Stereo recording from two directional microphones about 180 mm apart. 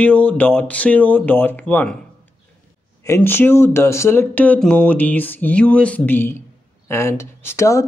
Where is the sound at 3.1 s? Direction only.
10° left (ahead or behind).